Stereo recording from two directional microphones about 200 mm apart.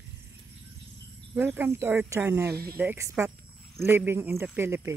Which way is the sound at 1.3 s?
10° right (ahead or behind).